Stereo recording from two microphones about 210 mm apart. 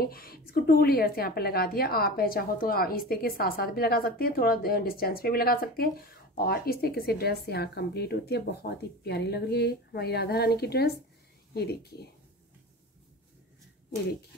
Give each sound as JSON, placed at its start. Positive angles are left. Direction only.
{"t": 0.0, "sound": "a woman's voice", "side_deg": 45}